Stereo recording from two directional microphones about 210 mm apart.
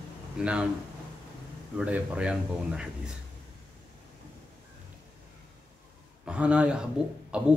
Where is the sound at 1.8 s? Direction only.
5° right (ahead or behind).